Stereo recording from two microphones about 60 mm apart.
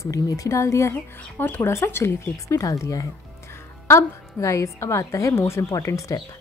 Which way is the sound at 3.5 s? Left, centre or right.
Left.